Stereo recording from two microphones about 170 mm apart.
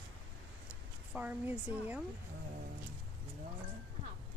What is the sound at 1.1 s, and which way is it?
Speech, 10° right (ahead or behind).